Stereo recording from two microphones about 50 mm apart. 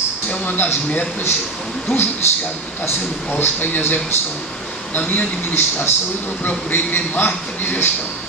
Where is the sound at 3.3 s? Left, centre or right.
Left.